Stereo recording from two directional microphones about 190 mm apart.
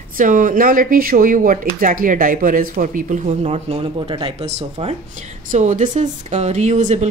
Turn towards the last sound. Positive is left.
turn(degrees=-40)  # may be behind; listen again after turning